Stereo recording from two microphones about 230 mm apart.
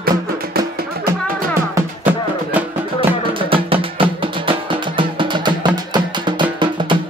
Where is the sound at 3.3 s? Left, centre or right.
Right.